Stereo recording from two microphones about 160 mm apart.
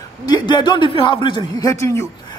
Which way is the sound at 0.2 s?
25° left (ahead or behind).